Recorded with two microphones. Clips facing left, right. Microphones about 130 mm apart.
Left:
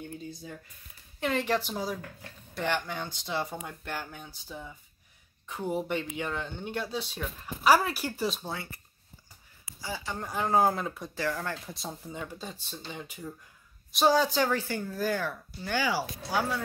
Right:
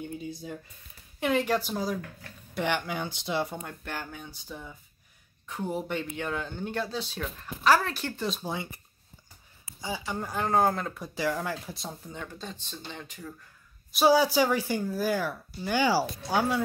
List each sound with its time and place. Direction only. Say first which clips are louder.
0.2 s a sound: right 4 dB; 10° right (ahead or behind)
1.2 s speech: right 2 dB; 5° right (ahead or behind)
3.5 s speech: even; 5° left (ahead or behind)
8.4 s speech: right 3 dB; 15° right (ahead or behind); by 11.1 s centre (ahead or behind)
11.1 s speech: right 3 dB; 10° right (ahead or behind)
11.7 s speech: left 1 dB; 5° left (ahead or behind)
13.9 s speech: right 3 dB; 10° right (ahead or behind)
15.8 s speech: right 7 dB; 30° right (ahead or behind)
16.3 s speech: right 4 dB; 15° right (ahead or behind)